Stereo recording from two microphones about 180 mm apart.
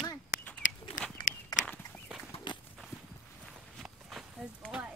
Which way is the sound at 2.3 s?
25° left (ahead or behind).